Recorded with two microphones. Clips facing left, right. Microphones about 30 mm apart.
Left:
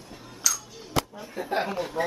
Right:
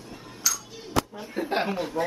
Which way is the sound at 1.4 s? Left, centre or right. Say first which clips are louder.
Right 4 dB; right.